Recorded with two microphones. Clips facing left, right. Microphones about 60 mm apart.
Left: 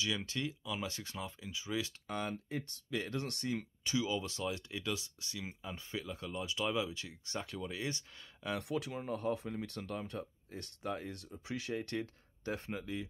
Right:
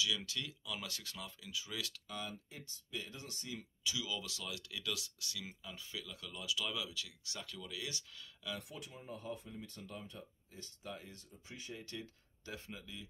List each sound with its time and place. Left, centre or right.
0.0 s speech: left
2.0 s speech: left
3.4 s speech: left
8.5 s speech: left